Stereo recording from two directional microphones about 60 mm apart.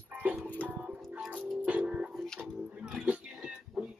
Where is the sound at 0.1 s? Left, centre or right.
Right.